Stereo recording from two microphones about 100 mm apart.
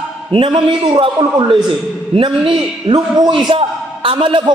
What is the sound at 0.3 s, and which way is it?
A man's voice, 55° right (ahead or behind).